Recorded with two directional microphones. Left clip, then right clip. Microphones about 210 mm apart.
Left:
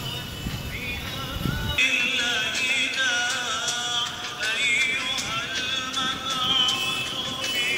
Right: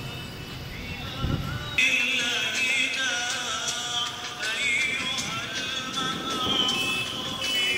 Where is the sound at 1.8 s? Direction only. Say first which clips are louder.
Even; 25° left (ahead or behind).